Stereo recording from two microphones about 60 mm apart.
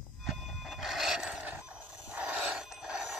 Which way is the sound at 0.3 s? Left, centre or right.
Centre.